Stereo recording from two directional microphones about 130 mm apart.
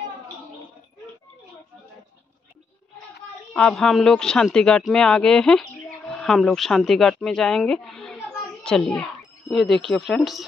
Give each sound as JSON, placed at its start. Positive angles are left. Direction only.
{"t": 3.5, "sound": "a man's voice", "side_deg": 5}